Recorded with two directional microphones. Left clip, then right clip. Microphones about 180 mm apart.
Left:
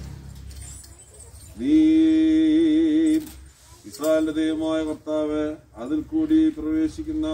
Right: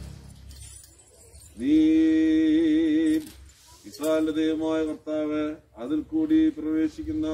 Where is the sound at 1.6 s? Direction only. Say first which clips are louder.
Left 3 dB; 5° left (ahead or behind).